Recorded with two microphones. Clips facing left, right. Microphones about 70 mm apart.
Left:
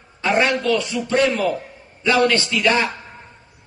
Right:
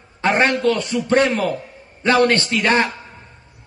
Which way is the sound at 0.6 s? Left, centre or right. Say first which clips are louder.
Right 2 dB; right.